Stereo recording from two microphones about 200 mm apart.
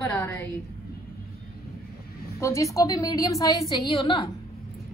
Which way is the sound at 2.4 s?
15° left (ahead or behind).